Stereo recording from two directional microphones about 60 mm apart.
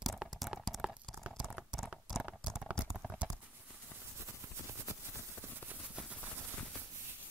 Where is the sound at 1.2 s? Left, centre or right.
Centre.